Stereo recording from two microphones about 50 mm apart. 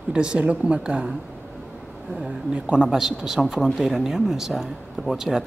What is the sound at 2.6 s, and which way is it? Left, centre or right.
Speech, centre.